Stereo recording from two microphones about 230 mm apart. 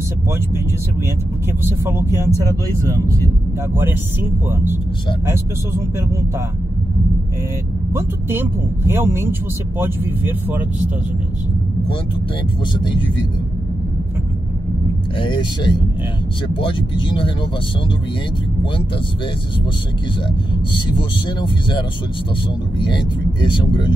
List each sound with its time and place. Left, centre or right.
1.6 s speech: centre
7.9 s speech: centre
15.1 s speech: centre
23.4 s speech: centre